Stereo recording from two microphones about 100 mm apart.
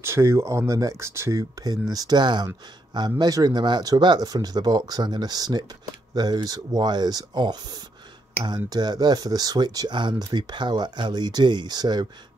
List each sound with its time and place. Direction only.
0.0 s speech: 25° right (ahead or behind); by 12.1 s 45° right (ahead or behind)